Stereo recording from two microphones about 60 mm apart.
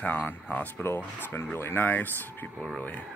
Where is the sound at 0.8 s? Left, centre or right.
Left.